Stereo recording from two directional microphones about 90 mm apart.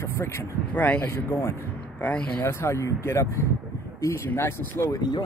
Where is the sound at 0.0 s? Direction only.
30° left (ahead or behind).